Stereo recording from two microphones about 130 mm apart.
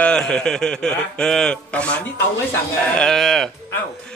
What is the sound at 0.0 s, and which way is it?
A man's voice, 5° left (ahead or behind).